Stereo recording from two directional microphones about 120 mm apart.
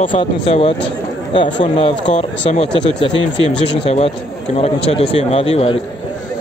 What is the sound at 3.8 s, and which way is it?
A man's voice, 55° left (ahead or behind).